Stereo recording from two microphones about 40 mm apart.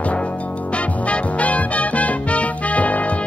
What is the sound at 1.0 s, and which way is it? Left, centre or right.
Music, left.